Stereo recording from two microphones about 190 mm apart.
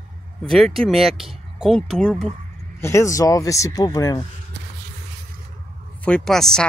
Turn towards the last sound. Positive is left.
turn(degrees=0)  # may be behind; listen again after turning